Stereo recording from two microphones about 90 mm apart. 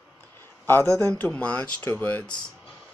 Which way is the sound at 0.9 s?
20° left (ahead or behind).